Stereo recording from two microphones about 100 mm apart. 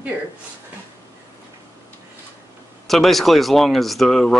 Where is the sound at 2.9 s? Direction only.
Centre (ahead or behind).